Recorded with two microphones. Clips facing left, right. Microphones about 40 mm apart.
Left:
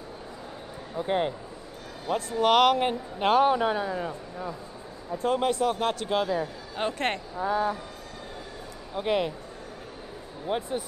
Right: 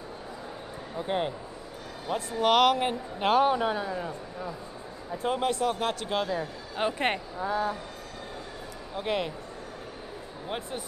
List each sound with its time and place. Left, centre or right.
0.9 s a man's voice: centre
7.3 s a man's voice: centre
8.9 s a man's voice: centre
10.5 s a man's voice: centre